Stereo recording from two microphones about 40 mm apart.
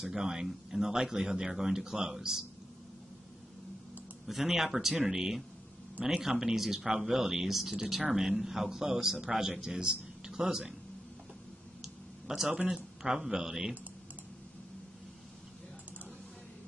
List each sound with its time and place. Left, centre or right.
0.0 s speech: centre
4.3 s speech: centre
12.4 s speech: right